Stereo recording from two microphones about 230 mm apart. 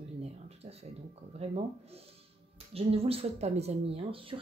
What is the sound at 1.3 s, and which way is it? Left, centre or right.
Speech, right.